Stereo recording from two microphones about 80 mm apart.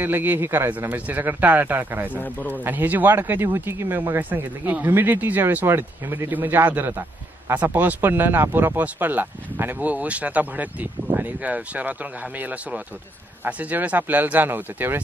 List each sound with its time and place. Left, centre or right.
0.0 s speech: right
2.1 s speech: left
2.6 s speech: right